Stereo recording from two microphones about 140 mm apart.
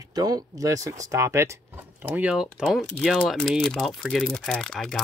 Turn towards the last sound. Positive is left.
turn(degrees=0)  # may be behind; listen again after turning